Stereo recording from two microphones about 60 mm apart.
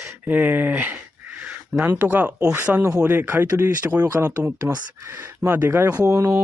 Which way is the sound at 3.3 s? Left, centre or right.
Right.